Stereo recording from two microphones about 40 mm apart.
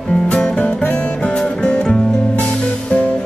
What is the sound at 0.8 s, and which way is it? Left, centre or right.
Music, left.